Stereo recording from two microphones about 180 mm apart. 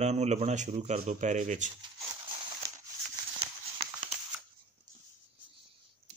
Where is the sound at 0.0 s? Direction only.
40° right (ahead or behind).